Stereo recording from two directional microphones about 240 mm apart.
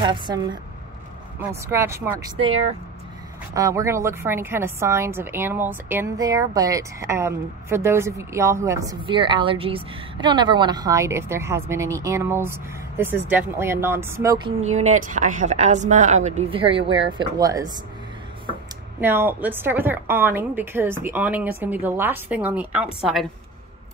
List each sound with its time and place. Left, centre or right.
0.0 s a woman's voice: centre
1.7 s a woman's voice: centre
3.5 s a woman's voice: centre
14.6 s a woman's voice: right
18.9 s a woman's voice: centre